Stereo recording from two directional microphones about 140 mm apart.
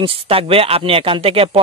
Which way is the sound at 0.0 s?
40° right (ahead or behind).